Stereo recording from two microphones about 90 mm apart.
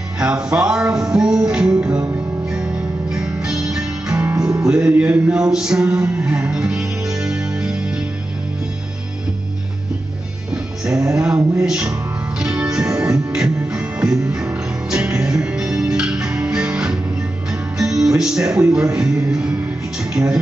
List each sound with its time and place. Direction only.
0.2 s music: 10° right (ahead or behind)
4.2 s music: 20° right (ahead or behind)
10.5 s music: 10° right (ahead or behind)